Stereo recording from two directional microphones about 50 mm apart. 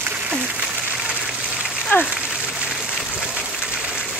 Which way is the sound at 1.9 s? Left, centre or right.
Left.